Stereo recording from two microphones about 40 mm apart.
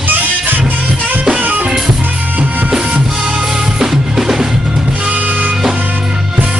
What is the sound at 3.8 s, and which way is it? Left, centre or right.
Drum kit, centre.